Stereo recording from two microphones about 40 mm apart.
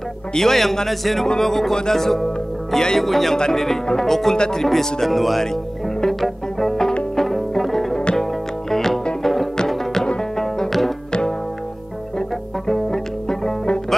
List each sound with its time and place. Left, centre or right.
0.3 s a man's voice: centre
3.0 s a man's voice: centre
5.0 s a man's voice: centre
6.0 s music: centre
12.2 s music: centre